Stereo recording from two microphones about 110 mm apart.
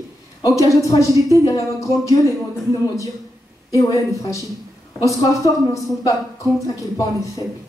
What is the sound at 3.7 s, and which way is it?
A woman's voice, 30° left (ahead or behind).